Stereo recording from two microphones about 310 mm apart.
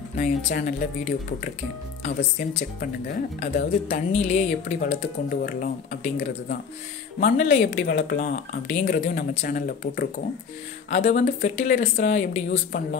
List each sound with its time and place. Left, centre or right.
0.1 s speech: left
2.0 s speech: left